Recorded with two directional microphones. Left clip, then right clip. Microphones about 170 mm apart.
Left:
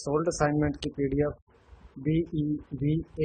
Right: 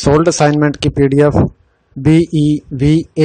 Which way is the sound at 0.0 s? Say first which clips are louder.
Right 16 dB; 55° right (ahead or behind).